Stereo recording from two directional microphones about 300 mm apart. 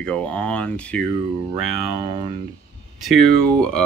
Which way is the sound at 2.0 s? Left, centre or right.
Right.